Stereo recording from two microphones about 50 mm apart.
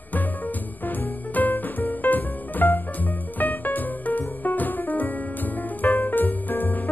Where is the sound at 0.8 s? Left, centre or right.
Left.